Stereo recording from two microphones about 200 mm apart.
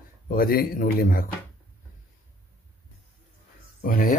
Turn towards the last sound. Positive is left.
turn(degrees=45)  # may be behind; listen again after turning